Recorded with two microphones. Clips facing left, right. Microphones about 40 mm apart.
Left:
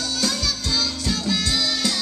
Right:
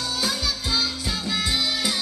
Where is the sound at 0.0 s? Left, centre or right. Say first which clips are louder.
Left 1 dB; centre.